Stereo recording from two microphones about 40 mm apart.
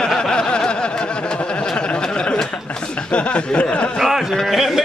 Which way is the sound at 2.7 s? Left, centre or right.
Left.